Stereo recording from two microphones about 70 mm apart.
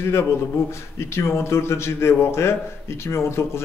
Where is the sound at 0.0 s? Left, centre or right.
Left.